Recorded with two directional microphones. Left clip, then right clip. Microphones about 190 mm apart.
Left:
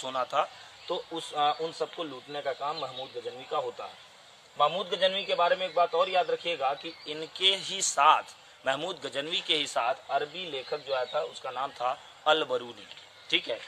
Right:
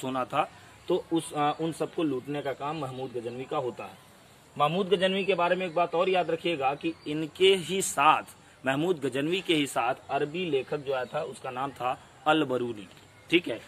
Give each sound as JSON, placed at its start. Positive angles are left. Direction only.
{"t": 0.0, "sound": "a man's voice", "side_deg": 5}